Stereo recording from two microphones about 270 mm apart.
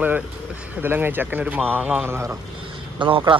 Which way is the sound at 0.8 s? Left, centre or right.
Centre.